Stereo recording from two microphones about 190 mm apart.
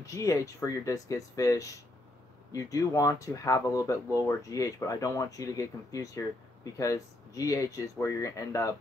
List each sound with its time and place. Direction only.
0.0 s speech: 15° left (ahead or behind)